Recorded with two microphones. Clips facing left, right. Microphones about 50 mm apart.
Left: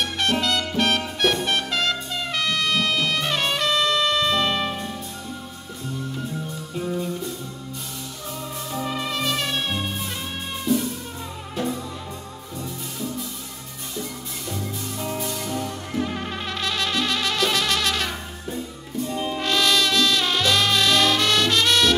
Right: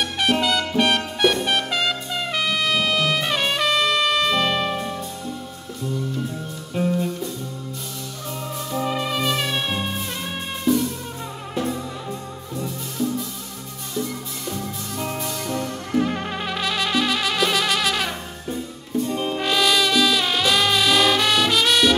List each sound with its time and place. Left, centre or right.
0.2 s music: centre
4.6 s music: centre
8.7 s music: centre
15.1 s music: centre
15.9 s music: centre
19.0 s music: centre
19.4 s music: centre